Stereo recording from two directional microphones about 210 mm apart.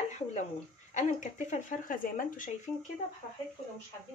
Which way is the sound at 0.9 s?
35° left (ahead or behind).